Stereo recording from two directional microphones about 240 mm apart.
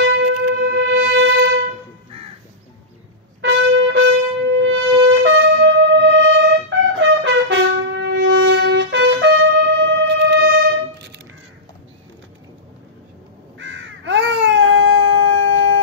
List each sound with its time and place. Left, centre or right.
0.0 s music: right
3.3 s trumpet: right
4.5 s wind instrument: right
9.8 s music: right
13.6 s a sound: right